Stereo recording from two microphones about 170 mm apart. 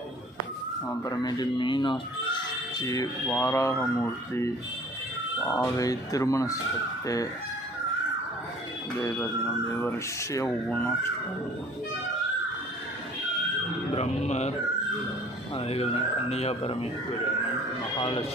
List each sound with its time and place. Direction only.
1.0 s speech: 25° left (ahead or behind)
8.9 s speech: 15° left (ahead or behind)
13.9 s speech: 40° left (ahead or behind)
15.5 s speech: 35° left (ahead or behind)
17.9 s speech: 30° left (ahead or behind)